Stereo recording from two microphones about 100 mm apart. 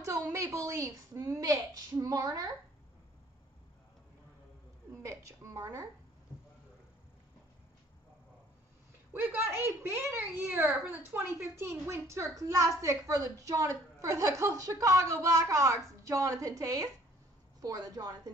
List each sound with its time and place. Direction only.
0.0 s a woman's voice: 30° right (ahead or behind)
5.0 s a woman's voice: 30° right (ahead or behind)
9.1 s a woman's voice: 20° right (ahead or behind); by 18.3 s 40° right (ahead or behind)